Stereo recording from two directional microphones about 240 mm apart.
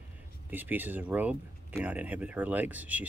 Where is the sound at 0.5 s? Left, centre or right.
Centre.